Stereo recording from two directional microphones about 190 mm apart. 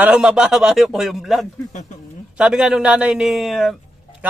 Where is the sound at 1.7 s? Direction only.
40° left (ahead or behind).